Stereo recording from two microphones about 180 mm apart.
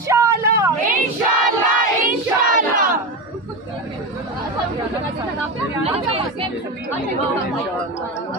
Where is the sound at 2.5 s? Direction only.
50° right (ahead or behind).